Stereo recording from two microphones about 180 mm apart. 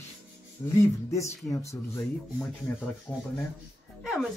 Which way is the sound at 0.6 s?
15° left (ahead or behind).